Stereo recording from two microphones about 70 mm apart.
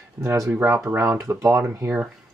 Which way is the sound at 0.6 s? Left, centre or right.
Right.